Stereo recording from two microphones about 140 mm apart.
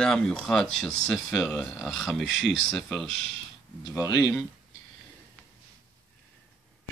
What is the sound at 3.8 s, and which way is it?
Speech, 25° left (ahead or behind).